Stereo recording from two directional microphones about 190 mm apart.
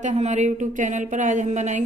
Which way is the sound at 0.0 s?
35° right (ahead or behind).